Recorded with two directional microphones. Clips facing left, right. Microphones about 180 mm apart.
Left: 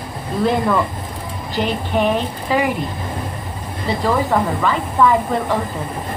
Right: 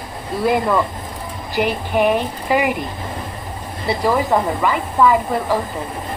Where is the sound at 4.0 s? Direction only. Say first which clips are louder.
Even; 20° right (ahead or behind).